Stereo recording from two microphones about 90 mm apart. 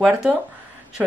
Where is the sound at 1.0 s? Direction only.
20° right (ahead or behind).